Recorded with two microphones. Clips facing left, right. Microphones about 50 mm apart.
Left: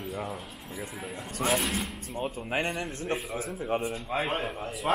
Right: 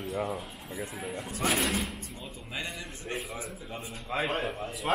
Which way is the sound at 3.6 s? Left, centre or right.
Left.